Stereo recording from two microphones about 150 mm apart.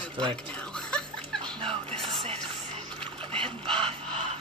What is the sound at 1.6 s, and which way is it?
Music, 35° right (ahead or behind).